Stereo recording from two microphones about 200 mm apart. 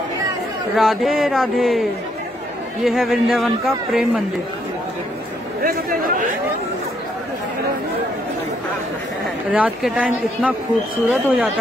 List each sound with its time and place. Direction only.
0.7 s speech: centre (ahead or behind)
5.6 s chatter: 45° right (ahead or behind)
9.5 s speech: 5° right (ahead or behind)